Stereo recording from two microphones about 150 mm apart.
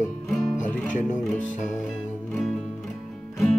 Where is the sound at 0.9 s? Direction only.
55° left (ahead or behind).